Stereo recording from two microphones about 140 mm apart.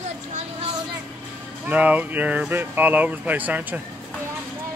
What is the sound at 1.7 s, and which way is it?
Speech, 10° right (ahead or behind).